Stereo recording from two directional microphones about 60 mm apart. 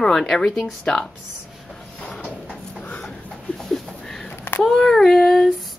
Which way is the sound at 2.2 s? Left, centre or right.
Left.